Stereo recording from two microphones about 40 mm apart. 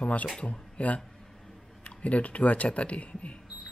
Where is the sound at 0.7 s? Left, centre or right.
Left.